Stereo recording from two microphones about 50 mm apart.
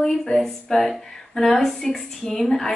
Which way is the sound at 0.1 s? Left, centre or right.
Centre.